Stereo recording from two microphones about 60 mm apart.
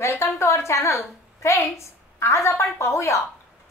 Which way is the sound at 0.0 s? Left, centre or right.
Left.